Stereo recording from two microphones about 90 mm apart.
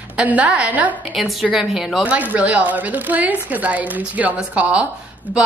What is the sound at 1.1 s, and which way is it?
Speech, centre (ahead or behind).